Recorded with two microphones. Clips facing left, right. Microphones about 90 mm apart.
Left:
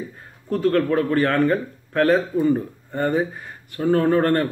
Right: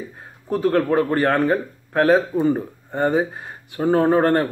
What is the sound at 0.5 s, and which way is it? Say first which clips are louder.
Speech: right 1 dB; 15° right (ahead or behind).